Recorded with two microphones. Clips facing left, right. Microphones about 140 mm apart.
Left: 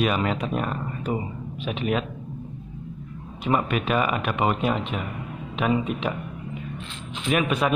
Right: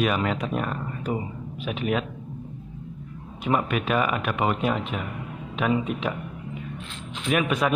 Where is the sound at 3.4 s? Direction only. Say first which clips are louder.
Left 1 dB; 5° right (ahead or behind).